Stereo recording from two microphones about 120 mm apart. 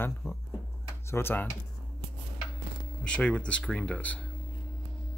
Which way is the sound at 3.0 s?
10° left (ahead or behind).